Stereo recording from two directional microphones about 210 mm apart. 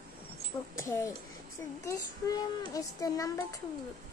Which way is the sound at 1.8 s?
15° left (ahead or behind).